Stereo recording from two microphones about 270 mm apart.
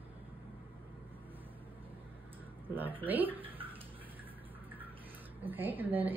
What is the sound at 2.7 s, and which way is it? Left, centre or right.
Speech, centre.